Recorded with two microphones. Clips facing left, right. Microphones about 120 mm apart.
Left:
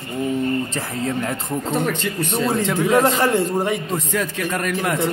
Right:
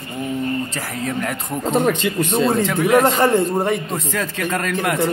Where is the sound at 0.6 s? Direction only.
25° left (ahead or behind).